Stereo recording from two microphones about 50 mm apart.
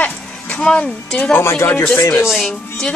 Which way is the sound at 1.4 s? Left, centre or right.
Left.